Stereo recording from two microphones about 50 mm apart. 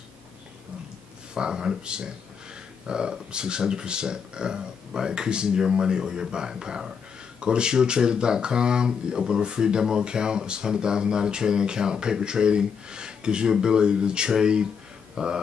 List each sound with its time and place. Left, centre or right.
1.3 s speech: centre